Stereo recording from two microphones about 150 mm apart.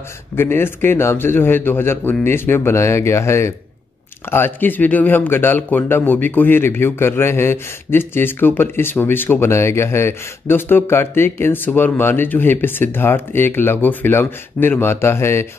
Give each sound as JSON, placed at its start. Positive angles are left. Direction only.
{"t": 0.4, "sound": "speech", "side_deg": 15}